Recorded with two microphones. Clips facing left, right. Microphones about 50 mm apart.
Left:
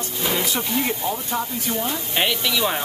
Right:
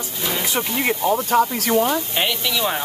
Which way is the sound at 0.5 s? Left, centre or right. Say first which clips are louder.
Right 2 dB; right.